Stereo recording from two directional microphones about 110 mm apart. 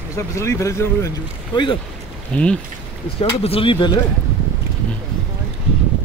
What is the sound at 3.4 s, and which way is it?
Speech, 55° left (ahead or behind).